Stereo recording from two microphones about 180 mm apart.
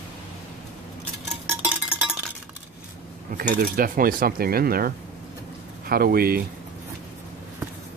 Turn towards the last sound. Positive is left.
turn(degrees=-55)  # may be behind; listen again after turning